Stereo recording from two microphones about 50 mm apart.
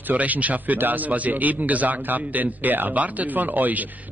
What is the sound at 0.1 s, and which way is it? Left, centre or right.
A man's voice, right.